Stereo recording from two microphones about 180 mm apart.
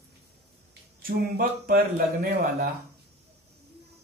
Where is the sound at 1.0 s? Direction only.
55° right (ahead or behind).